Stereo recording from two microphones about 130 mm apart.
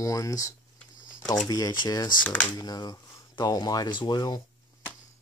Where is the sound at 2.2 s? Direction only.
15° left (ahead or behind).